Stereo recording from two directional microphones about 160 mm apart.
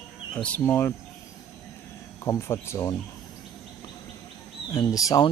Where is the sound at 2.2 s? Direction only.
15° left (ahead or behind).